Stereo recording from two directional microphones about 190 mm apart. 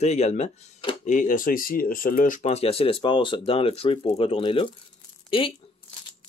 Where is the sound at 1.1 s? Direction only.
45° left (ahead or behind); by 5.5 s 30° left (ahead or behind).